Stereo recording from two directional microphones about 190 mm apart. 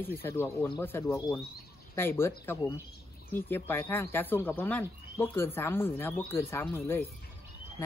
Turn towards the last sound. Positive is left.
turn(degrees=10)  # may be behind; listen again after turning